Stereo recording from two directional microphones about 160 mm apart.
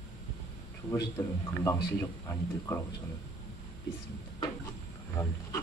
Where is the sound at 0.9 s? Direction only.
15° left (ahead or behind).